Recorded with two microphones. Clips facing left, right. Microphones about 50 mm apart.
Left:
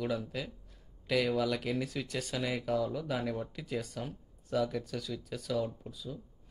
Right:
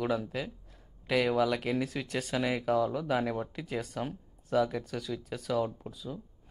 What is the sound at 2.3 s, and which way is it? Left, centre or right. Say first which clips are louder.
Speech: right 5 dB; right.